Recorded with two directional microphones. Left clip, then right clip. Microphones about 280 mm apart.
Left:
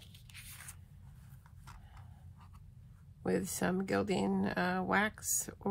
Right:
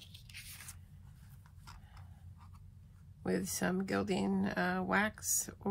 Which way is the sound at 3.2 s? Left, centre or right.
Centre.